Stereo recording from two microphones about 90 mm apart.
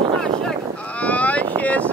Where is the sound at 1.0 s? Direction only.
15° left (ahead or behind).